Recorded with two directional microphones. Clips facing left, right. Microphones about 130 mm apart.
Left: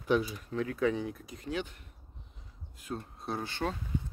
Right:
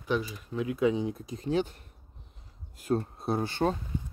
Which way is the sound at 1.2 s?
30° right (ahead or behind).